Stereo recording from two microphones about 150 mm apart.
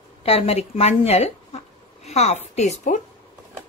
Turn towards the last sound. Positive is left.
turn(degrees=50)  # may be behind; listen again after turning